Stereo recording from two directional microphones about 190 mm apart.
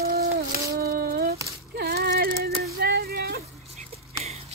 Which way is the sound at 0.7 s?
55° right (ahead or behind).